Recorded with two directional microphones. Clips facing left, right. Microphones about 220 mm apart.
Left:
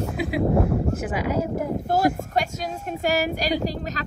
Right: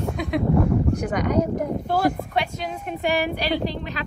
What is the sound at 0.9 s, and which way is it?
Speech, 5° left (ahead or behind).